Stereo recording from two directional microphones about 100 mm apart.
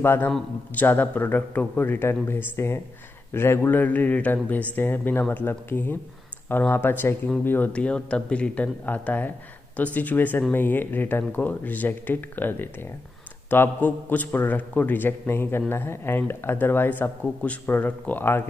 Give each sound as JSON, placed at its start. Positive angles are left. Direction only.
{"t": 0.0, "sound": "speech", "side_deg": 25}